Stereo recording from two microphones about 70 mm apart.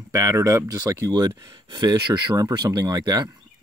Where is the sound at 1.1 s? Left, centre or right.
Right.